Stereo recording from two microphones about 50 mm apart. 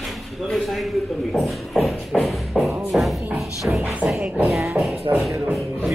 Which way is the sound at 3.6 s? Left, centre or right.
Right.